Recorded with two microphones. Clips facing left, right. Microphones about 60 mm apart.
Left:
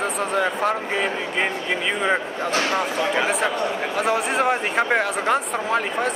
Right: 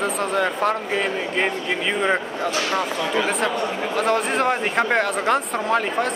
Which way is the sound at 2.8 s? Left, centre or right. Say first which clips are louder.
Left 1 dB; centre.